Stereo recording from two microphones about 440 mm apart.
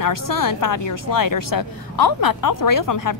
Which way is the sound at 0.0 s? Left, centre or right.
Left.